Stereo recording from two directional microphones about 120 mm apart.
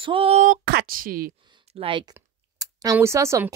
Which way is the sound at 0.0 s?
50° right (ahead or behind).